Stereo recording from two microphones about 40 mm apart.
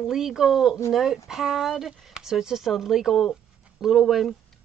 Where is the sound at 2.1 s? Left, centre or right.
Centre.